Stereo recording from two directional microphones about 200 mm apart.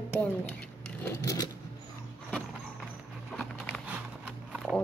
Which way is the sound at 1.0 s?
15° left (ahead or behind).